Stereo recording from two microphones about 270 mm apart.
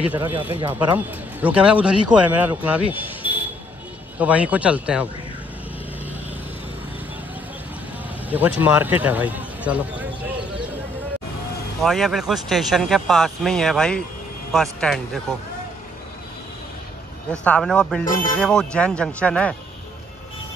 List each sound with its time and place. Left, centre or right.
0.2 s speech: centre
0.7 s speech: centre
8.3 s speech: centre
11.8 s speech: centre
17.4 s speech: centre
18.0 s speech: left
18.4 s speech: centre